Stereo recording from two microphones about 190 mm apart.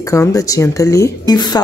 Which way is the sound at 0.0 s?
15° left (ahead or behind).